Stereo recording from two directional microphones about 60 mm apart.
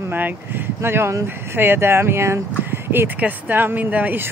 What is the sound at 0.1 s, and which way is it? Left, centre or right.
Speech, right.